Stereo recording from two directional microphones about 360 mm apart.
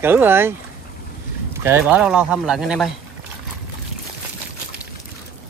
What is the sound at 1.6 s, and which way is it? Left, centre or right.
Speech, centre.